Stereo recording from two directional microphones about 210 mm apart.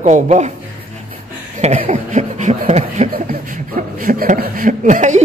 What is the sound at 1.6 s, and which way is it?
Speech, 30° right (ahead or behind).